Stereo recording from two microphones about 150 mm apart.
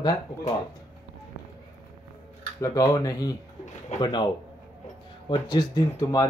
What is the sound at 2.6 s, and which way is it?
Speech, 25° left (ahead or behind).